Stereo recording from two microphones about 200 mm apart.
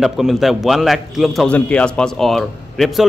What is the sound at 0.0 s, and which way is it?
Speech, centre (ahead or behind).